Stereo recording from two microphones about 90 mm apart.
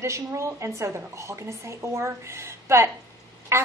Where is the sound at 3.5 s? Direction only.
30° right (ahead or behind).